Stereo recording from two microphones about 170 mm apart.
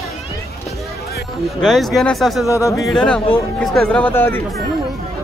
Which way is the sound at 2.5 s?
20° left (ahead or behind).